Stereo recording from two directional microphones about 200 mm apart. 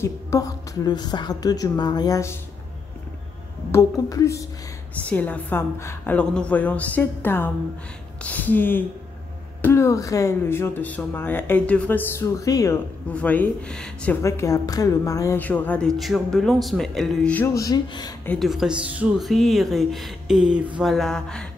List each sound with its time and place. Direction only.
0.0 s a woman's voice: 15° left (ahead or behind)
3.7 s speech: 15° left (ahead or behind)
14.2 s speech: 15° left (ahead or behind)
18.2 s speech: 5° left (ahead or behind)